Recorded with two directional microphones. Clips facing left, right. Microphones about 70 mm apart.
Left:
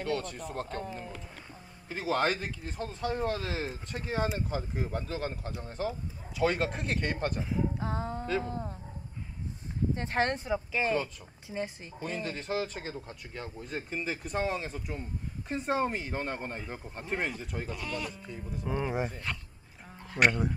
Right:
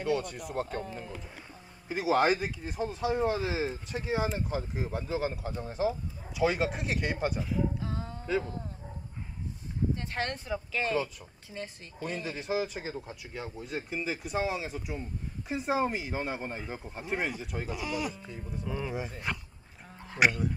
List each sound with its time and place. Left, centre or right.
0.0 s speech: centre
0.8 s a man's voice: centre
1.9 s a man's voice: centre
7.8 s music: left
9.9 s speech: left
12.0 s a man's voice: centre
18.7 s speech: left
19.3 s a man's voice: centre